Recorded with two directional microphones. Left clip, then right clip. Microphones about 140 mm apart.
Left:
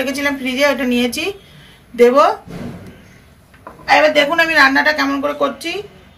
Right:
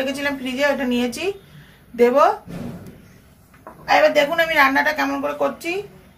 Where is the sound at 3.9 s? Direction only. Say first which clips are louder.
Left 4 dB; 25° right (ahead or behind); by 5.6 s 40° right (ahead or behind).